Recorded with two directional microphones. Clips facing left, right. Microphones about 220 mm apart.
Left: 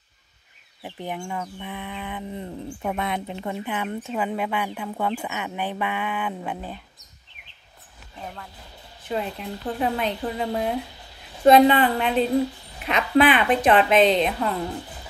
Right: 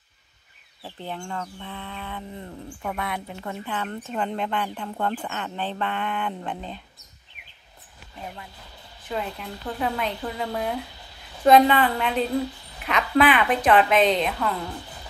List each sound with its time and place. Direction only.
0.8 s speech: 15° left (ahead or behind)
9.1 s a woman's voice: 25° left (ahead or behind)